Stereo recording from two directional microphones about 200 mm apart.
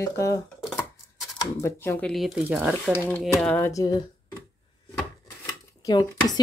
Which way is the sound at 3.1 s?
5° left (ahead or behind).